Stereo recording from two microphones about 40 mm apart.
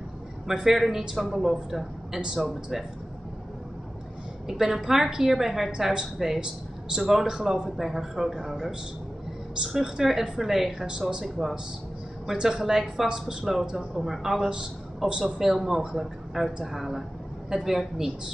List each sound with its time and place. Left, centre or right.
0.5 s a man's voice: centre
4.5 s a man's voice: centre
9.8 s speech: centre
10.9 s speech: centre
12.4 s a man's voice: centre
15.0 s a man's voice: centre